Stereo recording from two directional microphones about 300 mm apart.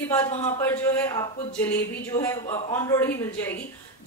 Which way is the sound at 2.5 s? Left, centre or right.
Left.